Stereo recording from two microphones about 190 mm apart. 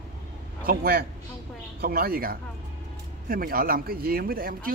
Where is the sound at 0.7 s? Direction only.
55° right (ahead or behind).